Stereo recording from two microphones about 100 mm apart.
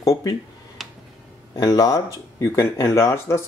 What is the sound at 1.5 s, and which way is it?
Speech, 40° left (ahead or behind).